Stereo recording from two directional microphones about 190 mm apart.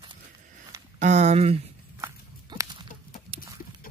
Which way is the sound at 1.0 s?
35° right (ahead or behind).